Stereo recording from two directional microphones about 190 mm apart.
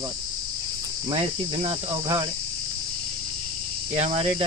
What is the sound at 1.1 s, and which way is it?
Cricket, 25° right (ahead or behind).